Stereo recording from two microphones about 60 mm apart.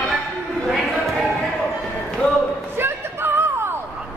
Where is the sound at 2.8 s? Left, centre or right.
Right.